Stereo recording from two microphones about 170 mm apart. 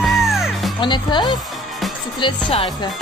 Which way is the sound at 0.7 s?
25° left (ahead or behind).